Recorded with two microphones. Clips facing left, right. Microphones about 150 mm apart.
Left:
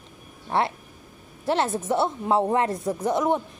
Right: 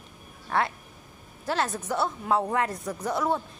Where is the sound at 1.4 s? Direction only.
25° left (ahead or behind).